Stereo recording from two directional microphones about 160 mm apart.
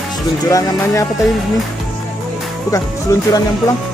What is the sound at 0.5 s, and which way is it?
Speech, 20° left (ahead or behind).